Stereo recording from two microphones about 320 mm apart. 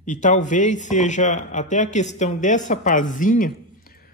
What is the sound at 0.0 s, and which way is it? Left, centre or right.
Speech, left.